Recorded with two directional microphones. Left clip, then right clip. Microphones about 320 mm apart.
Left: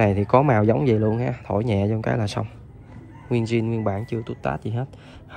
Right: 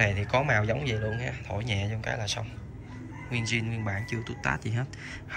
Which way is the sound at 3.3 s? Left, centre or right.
Centre.